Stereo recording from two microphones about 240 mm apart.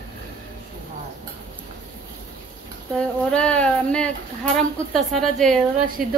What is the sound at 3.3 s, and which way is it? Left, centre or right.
Speech, centre.